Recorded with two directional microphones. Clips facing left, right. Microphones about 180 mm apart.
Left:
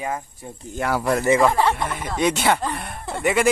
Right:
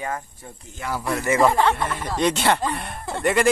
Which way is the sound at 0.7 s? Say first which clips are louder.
Left 5 dB; 60° left (ahead or behind).